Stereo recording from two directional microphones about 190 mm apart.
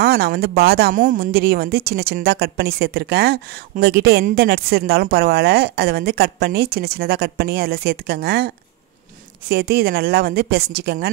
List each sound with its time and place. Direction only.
0.0 s speech: 55° right (ahead or behind)